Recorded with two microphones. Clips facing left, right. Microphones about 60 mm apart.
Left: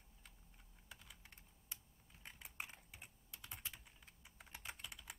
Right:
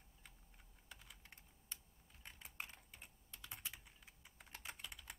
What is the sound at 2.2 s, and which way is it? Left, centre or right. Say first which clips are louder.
Typing: left 1 dB; centre.